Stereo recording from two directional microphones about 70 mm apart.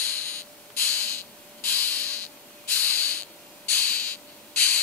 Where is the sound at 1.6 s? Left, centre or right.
Left.